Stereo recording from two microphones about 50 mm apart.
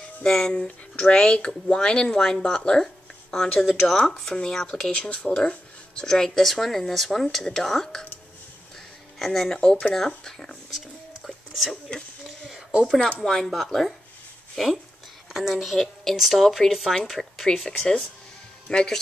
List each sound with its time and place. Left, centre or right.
0.2 s speech: centre
4.9 s speech: centre
9.2 s speech: centre
11.2 s whispering: centre
12.8 s speech: centre
15.3 s speech: centre
18.7 s speech: centre